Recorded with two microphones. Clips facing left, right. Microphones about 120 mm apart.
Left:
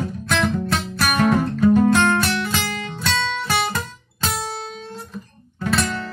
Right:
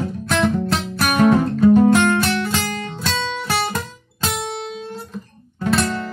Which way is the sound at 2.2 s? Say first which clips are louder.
Right 2 dB; 55° right (ahead or behind).